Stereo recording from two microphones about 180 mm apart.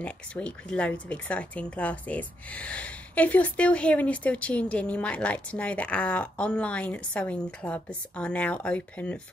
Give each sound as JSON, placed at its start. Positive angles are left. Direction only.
{"t": 0.0, "sound": "speech", "side_deg": 5}